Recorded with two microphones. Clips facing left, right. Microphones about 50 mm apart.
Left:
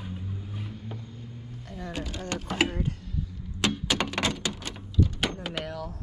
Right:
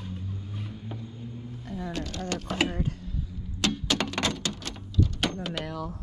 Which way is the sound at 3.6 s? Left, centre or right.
Centre.